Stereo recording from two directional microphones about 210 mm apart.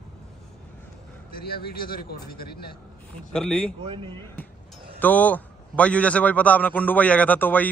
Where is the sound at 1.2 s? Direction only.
45° left (ahead or behind).